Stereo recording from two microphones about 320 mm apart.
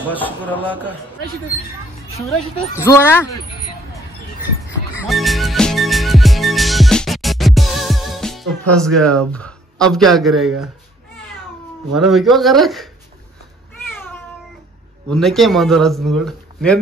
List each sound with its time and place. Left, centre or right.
0.0 s a man's voice: centre
2.1 s speech: centre
4.6 s music: centre
11.9 s a man's voice: centre
13.9 s cat: centre
15.0 s a man's voice: centre